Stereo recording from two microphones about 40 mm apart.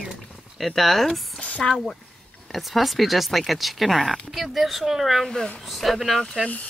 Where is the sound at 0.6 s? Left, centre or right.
Centre.